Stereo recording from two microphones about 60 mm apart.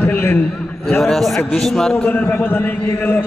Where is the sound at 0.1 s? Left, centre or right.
Left.